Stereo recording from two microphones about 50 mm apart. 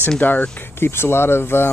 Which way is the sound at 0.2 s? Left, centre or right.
Left.